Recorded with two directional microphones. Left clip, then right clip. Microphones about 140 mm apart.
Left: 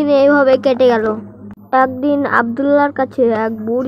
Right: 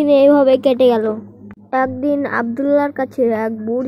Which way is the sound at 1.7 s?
25° right (ahead or behind).